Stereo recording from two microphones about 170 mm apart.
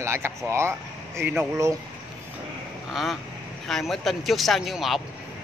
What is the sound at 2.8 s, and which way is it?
Speech, centre (ahead or behind).